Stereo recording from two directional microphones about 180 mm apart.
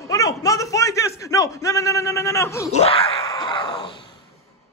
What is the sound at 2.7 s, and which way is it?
Wail, 35° left (ahead or behind).